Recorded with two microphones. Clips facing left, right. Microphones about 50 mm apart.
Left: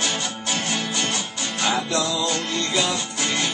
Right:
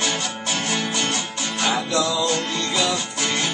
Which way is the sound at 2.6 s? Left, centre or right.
Centre.